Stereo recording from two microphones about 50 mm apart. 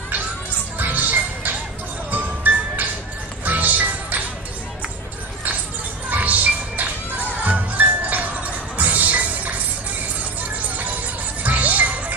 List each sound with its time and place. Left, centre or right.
0.7 s music: right
6.0 s music: right
11.4 s music: right